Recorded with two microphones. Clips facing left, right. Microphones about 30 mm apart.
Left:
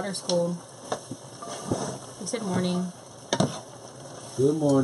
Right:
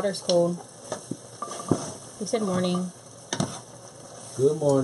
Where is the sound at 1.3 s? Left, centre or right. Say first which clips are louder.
Right 3 dB; centre.